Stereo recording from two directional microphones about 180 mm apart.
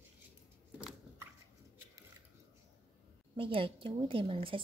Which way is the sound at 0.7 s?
5° right (ahead or behind).